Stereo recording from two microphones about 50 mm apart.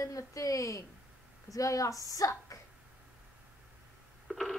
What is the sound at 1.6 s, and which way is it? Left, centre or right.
Speech, left.